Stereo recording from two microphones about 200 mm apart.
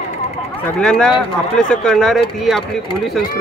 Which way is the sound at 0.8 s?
5° left (ahead or behind).